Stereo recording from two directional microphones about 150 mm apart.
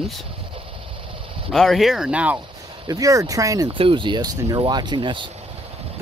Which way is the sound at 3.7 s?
35° right (ahead or behind).